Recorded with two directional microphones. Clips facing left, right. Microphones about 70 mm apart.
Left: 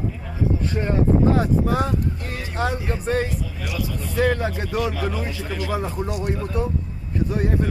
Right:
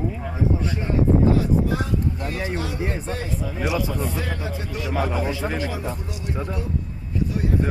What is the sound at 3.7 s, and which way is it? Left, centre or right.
Speech, right.